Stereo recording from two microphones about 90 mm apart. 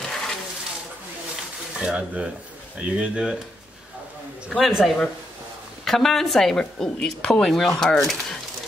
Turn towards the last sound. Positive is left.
turn(degrees=5)  # may be behind; listen again after turning